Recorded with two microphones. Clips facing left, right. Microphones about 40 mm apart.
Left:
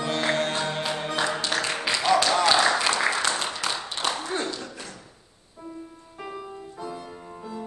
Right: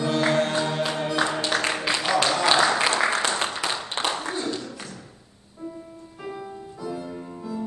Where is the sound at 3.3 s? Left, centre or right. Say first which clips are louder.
Right 2 dB; right.